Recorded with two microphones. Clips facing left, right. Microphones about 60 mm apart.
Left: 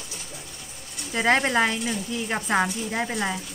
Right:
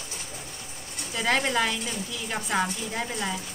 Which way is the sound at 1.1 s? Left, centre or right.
Left.